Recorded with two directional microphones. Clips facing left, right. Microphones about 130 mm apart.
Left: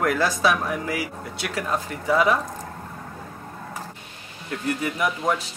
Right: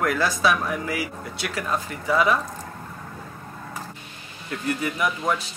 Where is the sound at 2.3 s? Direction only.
30° left (ahead or behind).